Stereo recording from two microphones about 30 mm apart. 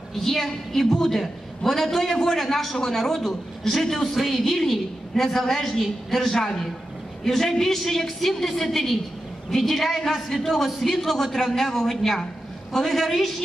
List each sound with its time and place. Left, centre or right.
0.1 s a woman's voice: centre
2.1 s a woman's voice: centre
2.4 s a woman's voice: centre
5.2 s a woman's voice: centre
6.3 s a man's voice: left
13.0 s a woman's voice: centre